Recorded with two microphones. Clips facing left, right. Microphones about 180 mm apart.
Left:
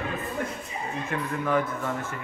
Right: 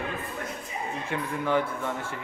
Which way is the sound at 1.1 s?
20° right (ahead or behind).